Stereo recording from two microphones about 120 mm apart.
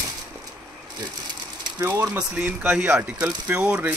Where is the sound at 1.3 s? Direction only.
30° right (ahead or behind).